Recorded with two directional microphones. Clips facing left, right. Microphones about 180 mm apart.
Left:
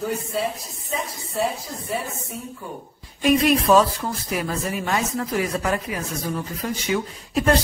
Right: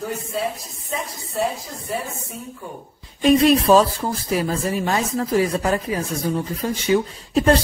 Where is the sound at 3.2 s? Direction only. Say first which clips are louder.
Right 3 dB; 30° right (ahead or behind).